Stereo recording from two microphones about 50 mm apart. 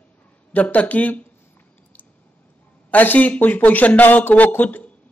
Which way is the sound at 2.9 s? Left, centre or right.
Left.